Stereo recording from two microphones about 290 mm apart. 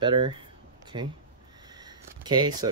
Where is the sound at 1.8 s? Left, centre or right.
Centre.